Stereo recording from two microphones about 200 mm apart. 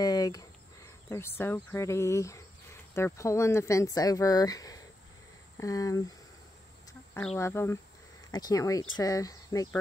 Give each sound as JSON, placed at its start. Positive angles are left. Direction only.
{"t": 0.0, "sound": "a sound", "side_deg": 20}
{"t": 1.4, "sound": "speech", "side_deg": 10}
{"t": 7.3, "sound": "speech", "side_deg": 10}